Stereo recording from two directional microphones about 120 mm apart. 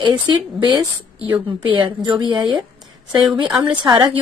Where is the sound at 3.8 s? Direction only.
35° right (ahead or behind).